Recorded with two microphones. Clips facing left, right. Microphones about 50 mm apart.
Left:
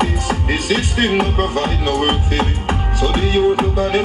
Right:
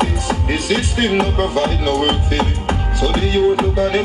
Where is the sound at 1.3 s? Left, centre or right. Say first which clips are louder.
Right 1 dB; left.